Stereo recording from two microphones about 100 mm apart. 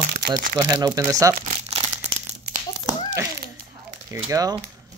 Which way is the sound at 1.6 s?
85° right.